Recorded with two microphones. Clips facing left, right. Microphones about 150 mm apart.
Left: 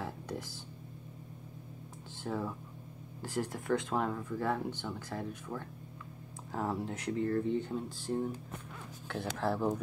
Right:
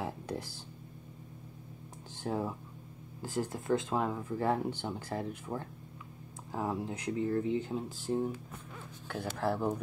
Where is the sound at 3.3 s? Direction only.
20° right (ahead or behind).